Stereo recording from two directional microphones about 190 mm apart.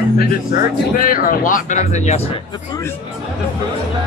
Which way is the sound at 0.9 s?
50° left (ahead or behind).